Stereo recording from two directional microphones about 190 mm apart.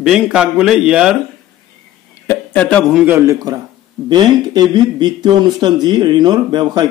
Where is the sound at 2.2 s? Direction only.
5° left (ahead or behind); by 6.9 s 20° right (ahead or behind).